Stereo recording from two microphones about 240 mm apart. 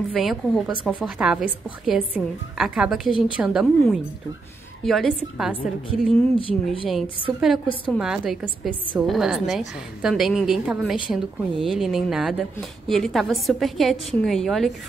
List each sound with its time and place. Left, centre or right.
0.1 s a woman's voice: centre
5.9 s speech: left
7.3 s a woman's voice: centre